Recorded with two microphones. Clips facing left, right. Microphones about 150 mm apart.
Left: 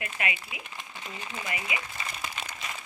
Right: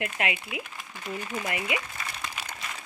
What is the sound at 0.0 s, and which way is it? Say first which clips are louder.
Speech: right 4 dB; 70° right (ahead or behind).